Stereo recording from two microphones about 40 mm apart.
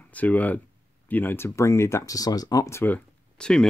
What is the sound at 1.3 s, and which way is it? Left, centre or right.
Speech, left.